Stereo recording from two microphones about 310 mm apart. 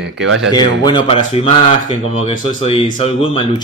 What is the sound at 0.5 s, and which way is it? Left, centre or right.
Speech, centre.